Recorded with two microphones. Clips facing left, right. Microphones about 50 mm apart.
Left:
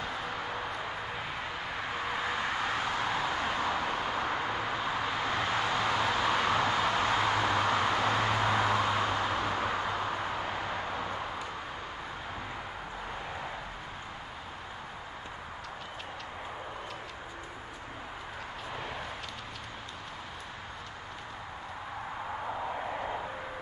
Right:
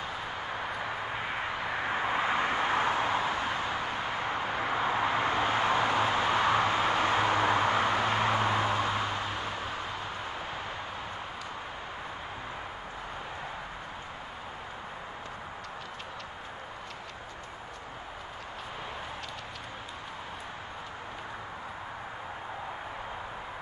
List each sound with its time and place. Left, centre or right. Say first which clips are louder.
2.0 s vehicle: right 4 dB; right
3.5 s a sound: left 1 dB; right
8.1 s vehicle: right 1 dB; right
9.1 s vehicle: left 3 dB; left